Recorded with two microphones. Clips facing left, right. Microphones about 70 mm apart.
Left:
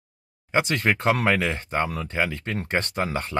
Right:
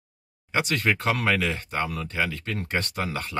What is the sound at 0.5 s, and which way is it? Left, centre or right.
Speech, left.